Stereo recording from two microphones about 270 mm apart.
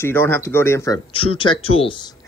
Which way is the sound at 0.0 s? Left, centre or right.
Centre.